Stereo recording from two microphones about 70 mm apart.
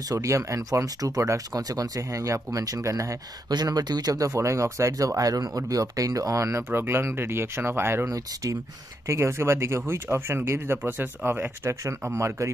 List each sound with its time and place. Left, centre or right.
0.1 s speech: right
3.5 s speech: right
6.7 s speech: right
10.9 s speech: right
12.0 s speech: right